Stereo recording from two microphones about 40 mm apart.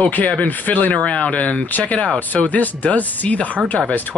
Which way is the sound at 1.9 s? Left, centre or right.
Left.